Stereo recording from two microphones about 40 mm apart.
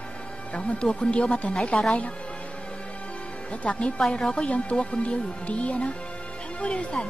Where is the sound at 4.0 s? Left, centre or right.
Centre.